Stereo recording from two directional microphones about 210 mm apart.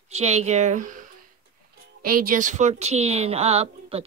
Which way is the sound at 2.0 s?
45° right (ahead or behind).